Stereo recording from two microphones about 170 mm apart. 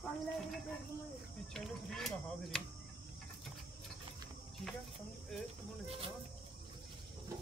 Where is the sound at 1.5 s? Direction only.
Centre (ahead or behind).